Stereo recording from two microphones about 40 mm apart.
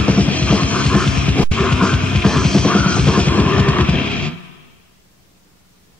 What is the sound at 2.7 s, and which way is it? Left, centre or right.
Music, left.